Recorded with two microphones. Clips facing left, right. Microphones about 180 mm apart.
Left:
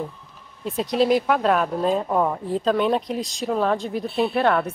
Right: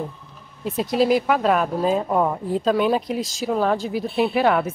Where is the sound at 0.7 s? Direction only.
Centre (ahead or behind).